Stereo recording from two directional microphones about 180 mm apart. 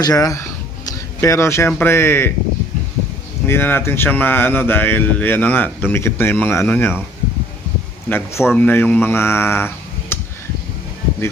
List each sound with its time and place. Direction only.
0.0 s speech: 20° left (ahead or behind)
3.4 s speech: 10° left (ahead or behind)
8.1 s speech: 15° left (ahead or behind)